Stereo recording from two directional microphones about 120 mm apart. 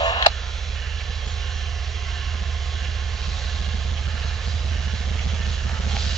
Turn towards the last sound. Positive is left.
turn(degrees=5)  # may be behind; listen again after turning